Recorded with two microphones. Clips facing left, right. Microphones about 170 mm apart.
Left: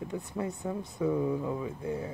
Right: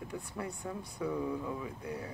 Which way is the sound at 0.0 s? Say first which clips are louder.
Left 6 dB; 20° left (ahead or behind).